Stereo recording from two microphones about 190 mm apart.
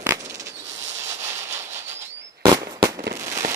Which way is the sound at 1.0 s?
15° right (ahead or behind).